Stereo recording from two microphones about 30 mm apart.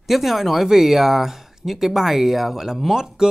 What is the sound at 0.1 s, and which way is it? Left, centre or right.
Speech, centre.